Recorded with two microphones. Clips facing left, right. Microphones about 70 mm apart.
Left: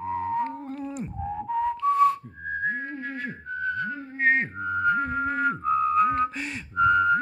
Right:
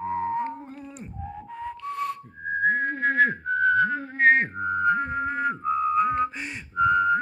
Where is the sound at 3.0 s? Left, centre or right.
Right.